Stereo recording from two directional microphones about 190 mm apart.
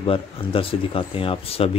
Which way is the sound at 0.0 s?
30° left (ahead or behind).